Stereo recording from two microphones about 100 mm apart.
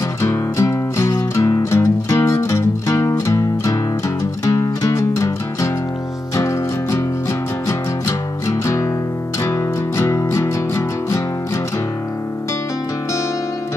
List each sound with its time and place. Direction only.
0.2 s music: 30° left (ahead or behind)
8.5 s music: 30° left (ahead or behind)